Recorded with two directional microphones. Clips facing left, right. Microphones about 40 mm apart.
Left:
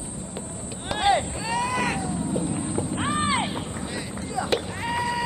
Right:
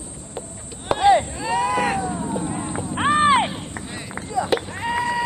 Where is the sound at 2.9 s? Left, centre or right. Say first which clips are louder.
Right 10 dB; right.